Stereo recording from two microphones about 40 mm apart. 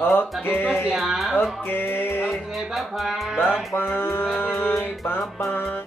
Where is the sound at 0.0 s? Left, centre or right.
Left.